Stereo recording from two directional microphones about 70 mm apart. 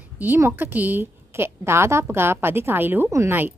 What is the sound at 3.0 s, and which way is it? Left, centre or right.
Speech, right.